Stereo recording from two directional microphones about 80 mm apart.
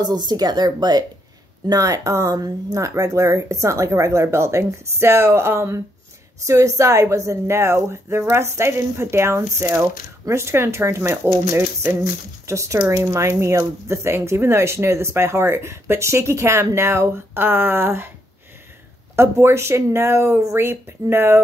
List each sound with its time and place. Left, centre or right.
0.0 s speech: right
1.7 s speech: right
19.1 s speech: right